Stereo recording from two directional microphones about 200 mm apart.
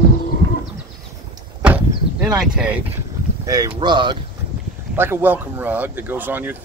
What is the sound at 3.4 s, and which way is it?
Boat, 20° right (ahead or behind).